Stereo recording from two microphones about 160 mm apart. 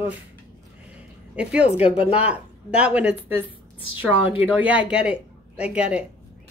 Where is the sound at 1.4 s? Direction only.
5° right (ahead or behind).